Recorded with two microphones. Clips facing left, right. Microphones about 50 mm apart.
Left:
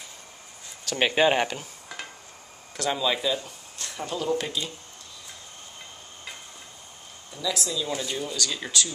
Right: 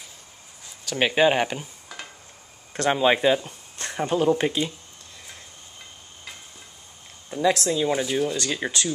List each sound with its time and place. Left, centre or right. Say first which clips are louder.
0.8 s speech: right 2 dB; centre
2.7 s speech: right 6 dB; right
7.2 s speech: right 8 dB; right
8.0 s speech: right 7 dB; centre
8.4 s speech: right 2 dB; right